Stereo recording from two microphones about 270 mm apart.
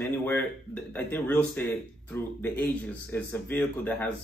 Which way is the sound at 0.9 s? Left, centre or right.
Centre.